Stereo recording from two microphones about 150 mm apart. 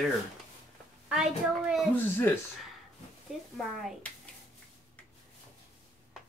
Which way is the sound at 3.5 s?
Centre (ahead or behind).